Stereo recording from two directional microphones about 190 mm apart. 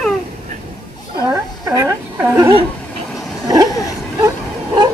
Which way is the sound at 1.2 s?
15° right (ahead or behind).